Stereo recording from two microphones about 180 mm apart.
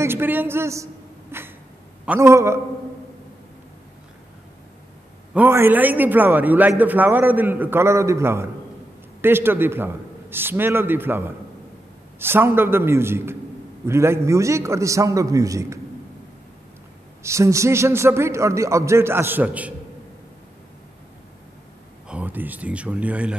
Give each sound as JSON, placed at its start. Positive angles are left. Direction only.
{"t": 0.0, "sound": "a man's voice", "side_deg": -10}
{"t": 1.3, "sound": "a sound", "side_deg": -15}
{"t": 2.0, "sound": "a man's voice", "side_deg": -15}
{"t": 5.3, "sound": "a man's voice", "side_deg": -10}
{"t": 17.2, "sound": "a man's voice", "side_deg": -15}
{"t": 22.0, "sound": "speech", "side_deg": -5}